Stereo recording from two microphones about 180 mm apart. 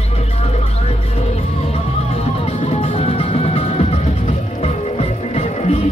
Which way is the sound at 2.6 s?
35° left (ahead or behind).